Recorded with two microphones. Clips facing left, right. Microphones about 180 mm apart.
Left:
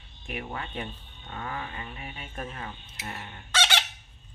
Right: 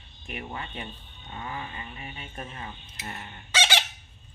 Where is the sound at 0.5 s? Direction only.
5° right (ahead or behind).